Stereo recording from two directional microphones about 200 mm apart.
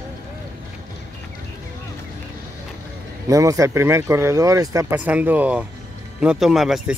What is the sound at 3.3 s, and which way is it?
Speech, 15° right (ahead or behind).